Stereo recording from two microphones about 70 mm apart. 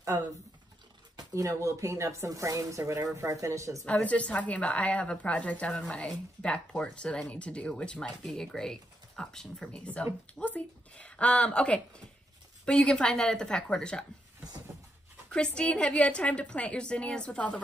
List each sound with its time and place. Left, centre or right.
0.1 s speech: right
1.3 s speech: right
3.8 s a woman's voice: centre
5.7 s speech: centre
15.3 s speech: centre